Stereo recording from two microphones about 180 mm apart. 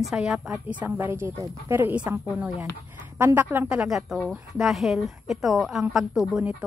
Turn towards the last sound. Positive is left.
turn(degrees=0)  # may be behind; listen again after turning